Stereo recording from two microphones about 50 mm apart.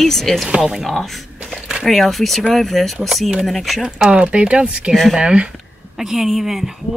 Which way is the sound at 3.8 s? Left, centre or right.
Centre.